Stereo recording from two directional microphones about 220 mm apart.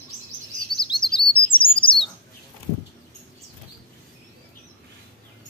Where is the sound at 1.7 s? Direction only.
25° left (ahead or behind).